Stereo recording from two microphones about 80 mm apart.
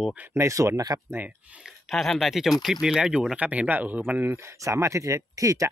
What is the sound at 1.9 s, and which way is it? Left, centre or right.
Speech, centre.